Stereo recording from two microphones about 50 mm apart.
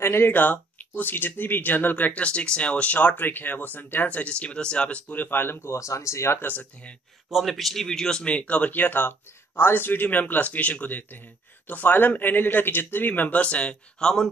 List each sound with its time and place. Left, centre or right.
0.0 s speech: left
0.3 s speech: left
5.2 s speech: left
5.8 s speech: left
6.4 s speech: left
7.2 s speech: centre
8.4 s speech: left